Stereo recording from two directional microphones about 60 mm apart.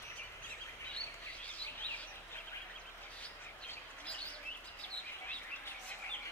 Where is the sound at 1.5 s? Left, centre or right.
Left.